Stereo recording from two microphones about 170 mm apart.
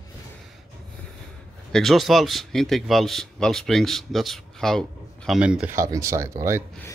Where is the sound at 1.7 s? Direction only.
Centre (ahead or behind).